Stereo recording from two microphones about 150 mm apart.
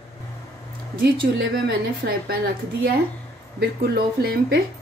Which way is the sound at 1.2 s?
90° right.